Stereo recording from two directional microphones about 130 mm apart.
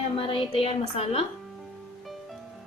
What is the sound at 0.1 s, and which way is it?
A woman's voice, 45° left (ahead or behind).